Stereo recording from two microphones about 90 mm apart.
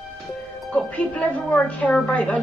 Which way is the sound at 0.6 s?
15° left (ahead or behind).